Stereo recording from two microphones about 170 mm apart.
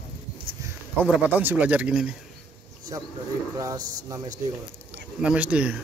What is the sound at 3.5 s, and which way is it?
Speech, 20° right (ahead or behind).